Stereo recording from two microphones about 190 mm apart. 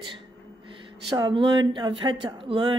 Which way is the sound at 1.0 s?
25° right (ahead or behind).